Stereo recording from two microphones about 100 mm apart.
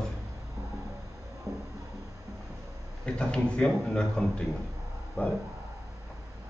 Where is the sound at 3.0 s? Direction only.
10° left (ahead or behind).